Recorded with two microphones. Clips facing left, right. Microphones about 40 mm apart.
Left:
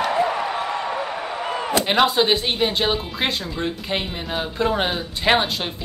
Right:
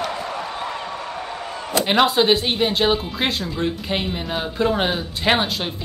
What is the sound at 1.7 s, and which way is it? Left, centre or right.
Speech, centre.